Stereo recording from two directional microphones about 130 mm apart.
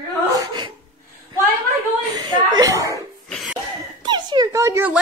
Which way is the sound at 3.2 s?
5° left (ahead or behind).